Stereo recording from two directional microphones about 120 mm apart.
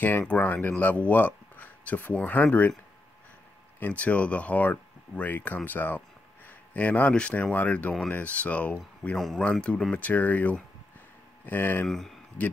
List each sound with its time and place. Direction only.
0.0 s speech: 15° left (ahead or behind)
3.8 s speech: 10° left (ahead or behind)